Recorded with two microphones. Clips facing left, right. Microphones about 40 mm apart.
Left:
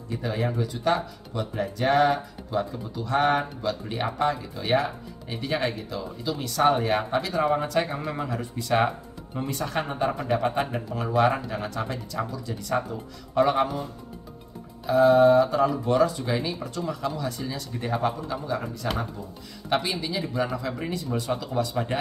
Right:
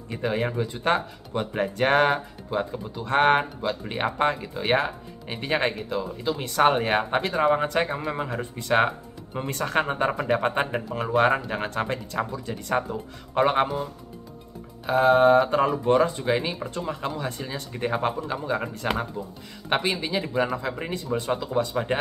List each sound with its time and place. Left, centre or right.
0.1 s speech: right
2.6 s speech: right
3.1 s speech: right
9.5 s speech: right
14.9 s speech: right